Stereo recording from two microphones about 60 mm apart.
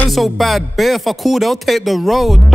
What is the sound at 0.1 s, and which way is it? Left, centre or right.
Speech, centre.